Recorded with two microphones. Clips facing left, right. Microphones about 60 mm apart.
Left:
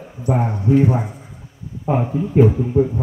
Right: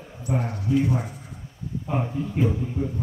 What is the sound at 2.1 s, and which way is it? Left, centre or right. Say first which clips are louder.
Speech: left 12 dB; left.